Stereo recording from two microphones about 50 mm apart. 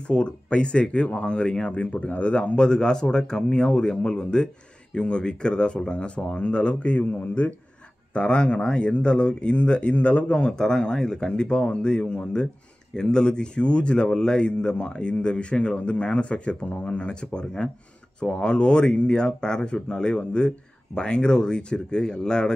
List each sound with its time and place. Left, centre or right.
0.0 s speech: left
8.1 s speech: left